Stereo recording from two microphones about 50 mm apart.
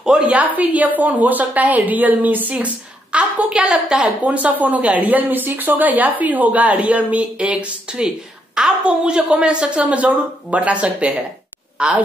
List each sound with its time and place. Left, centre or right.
0.2 s speech: right; by 4.1 s centre
4.2 s a woman's voice: right